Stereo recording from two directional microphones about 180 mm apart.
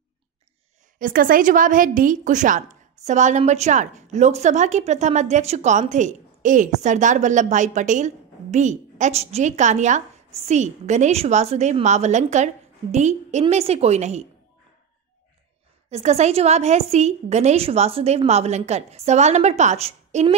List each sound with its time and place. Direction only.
0.9 s a woman's voice: 50° right (ahead or behind)
15.9 s a woman's voice: 35° right (ahead or behind)